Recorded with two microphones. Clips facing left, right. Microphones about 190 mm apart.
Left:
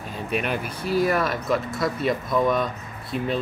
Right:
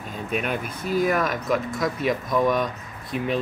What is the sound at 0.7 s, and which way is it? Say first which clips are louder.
Speech: left 1 dB; 50° right (ahead or behind).